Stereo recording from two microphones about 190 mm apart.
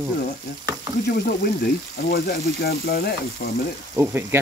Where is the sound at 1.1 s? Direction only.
55° left (ahead or behind).